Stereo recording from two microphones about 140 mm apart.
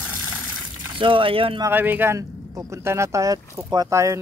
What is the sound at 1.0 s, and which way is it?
Speech, 35° right (ahead or behind).